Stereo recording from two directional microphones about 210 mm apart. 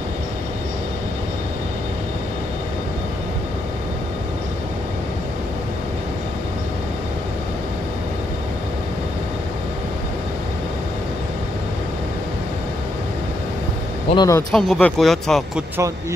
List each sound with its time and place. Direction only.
14.0 s speech: 20° left (ahead or behind)
14.5 s speech: 5° left (ahead or behind)